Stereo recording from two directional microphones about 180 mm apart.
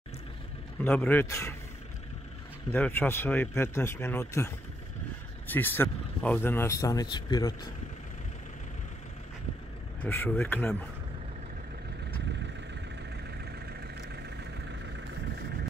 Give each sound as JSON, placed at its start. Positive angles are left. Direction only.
{"t": 0.8, "sound": "speech", "side_deg": 10}
{"t": 2.7, "sound": "speech", "side_deg": 10}
{"t": 5.5, "sound": "speech", "side_deg": 10}
{"t": 10.0, "sound": "speech", "side_deg": 10}